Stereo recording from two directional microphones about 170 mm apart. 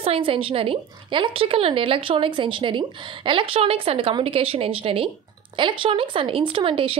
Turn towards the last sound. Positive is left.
turn(degrees=-30)  # may be behind; listen again after turning